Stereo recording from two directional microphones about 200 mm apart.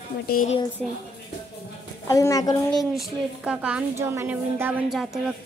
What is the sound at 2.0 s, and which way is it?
Speech, 15° left (ahead or behind).